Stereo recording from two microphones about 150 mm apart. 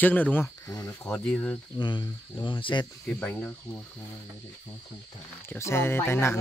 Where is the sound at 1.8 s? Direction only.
30° left (ahead or behind).